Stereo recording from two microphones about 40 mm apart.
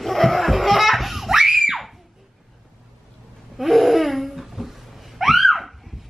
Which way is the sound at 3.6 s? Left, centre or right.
Centre.